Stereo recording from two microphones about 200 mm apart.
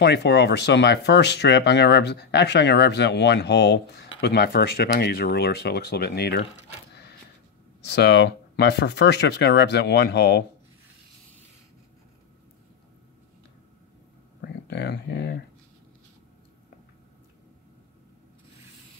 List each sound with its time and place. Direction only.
0.0 s speech: 55° left (ahead or behind)
7.8 s speech: 60° left (ahead or behind)
14.7 s a sound: 55° left (ahead or behind)